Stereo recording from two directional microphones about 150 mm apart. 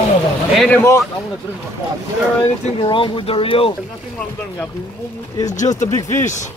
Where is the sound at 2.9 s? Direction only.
35° left (ahead or behind).